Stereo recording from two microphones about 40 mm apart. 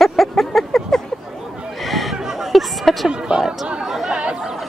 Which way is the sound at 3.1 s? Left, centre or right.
Right.